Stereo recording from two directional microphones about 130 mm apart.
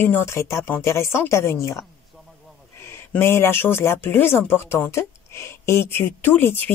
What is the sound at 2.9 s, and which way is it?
Speech, 20° left (ahead or behind).